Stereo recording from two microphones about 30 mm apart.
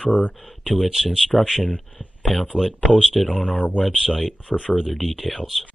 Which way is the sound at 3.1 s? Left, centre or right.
Centre.